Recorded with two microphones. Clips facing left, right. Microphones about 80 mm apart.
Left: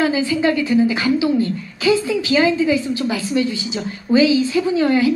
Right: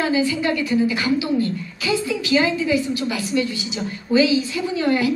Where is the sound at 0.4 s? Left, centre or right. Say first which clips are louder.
Left 4 dB; left.